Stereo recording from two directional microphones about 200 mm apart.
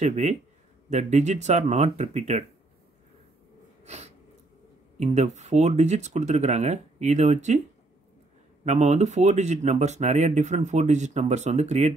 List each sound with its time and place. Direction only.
0.0 s speech: 35° right (ahead or behind)
3.8 s sneeze: 35° right (ahead or behind)
4.9 s speech: 35° right (ahead or behind)
8.6 s speech: 35° right (ahead or behind)